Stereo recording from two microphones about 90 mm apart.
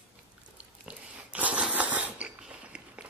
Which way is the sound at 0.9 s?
15° right (ahead or behind).